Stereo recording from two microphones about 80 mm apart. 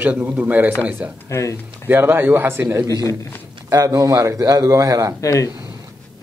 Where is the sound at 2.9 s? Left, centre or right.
Left.